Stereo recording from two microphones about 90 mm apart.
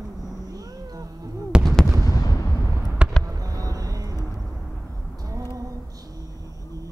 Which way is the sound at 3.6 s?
40° right (ahead or behind).